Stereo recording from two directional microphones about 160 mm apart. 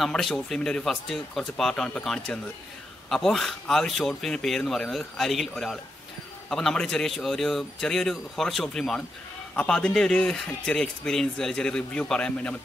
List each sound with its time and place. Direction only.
0.0 s a man's voice: centre (ahead or behind)